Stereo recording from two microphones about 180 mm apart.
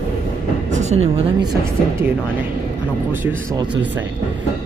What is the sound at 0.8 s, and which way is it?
Speech, 35° right (ahead or behind).